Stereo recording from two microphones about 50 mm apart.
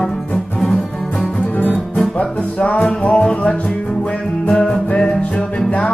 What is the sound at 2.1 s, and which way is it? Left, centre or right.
Music, left.